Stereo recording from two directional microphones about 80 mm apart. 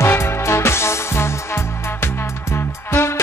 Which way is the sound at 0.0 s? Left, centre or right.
Left.